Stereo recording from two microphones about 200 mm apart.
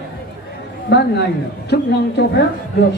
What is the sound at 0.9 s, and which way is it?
A man's voice, 60° left (ahead or behind).